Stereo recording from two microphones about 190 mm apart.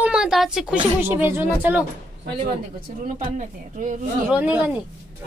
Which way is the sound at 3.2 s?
40° right (ahead or behind).